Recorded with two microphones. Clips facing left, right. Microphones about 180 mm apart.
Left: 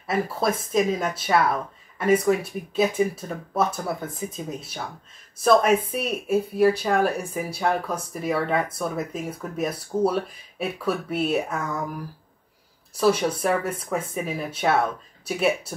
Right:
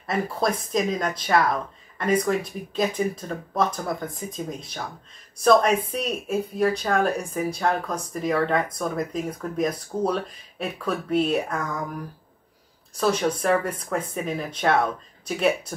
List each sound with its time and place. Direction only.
0.0 s speech: 5° left (ahead or behind)